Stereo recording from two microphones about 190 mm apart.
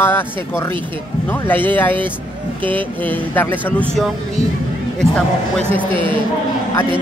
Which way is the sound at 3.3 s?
10° left (ahead or behind).